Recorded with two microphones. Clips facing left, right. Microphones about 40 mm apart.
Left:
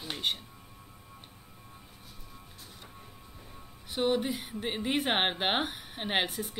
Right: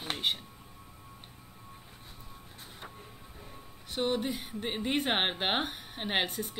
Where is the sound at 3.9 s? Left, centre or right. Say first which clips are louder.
Left 2 dB; centre.